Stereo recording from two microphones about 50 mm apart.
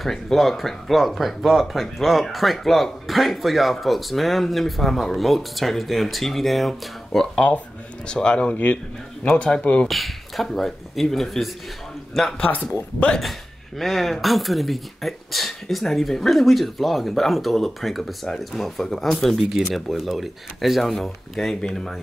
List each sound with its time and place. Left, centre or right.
0.0 s speech: centre
8.1 s speech: centre
9.8 s speech: centre
12.4 s speech: left
12.7 s speech: left
13.2 s speech: centre